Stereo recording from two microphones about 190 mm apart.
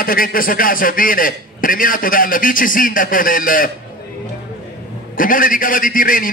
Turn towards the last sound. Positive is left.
turn(degrees=45)  # may be behind; listen again after turning